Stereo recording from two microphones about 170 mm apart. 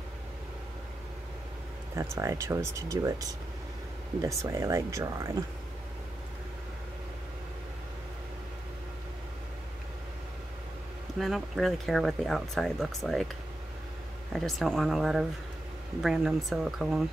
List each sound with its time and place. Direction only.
2.0 s speech: 20° right (ahead or behind)
11.1 s speech: centre (ahead or behind)
14.3 s speech: centre (ahead or behind)